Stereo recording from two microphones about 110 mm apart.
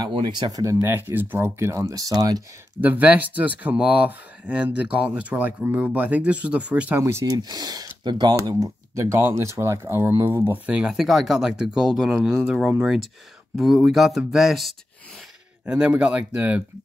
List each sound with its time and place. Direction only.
0.1 s speech: 45° right (ahead or behind)
0.6 s speech: 30° right (ahead or behind)
0.9 s speech: 20° right (ahead or behind); by 2.4 s 35° right (ahead or behind)
2.8 s speech: 15° right (ahead or behind)
7.0 s speech: 25° right (ahead or behind)
7.3 s speech: 40° right (ahead or behind)
8.4 s speech: 30° right (ahead or behind)
10.5 s speech: 10° right (ahead or behind)
15.6 s speech: 10° right (ahead or behind)